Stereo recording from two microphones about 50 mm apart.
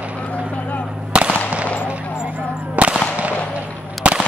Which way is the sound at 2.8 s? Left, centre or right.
Right.